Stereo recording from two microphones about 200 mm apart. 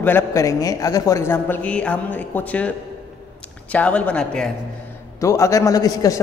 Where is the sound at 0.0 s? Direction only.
15° left (ahead or behind).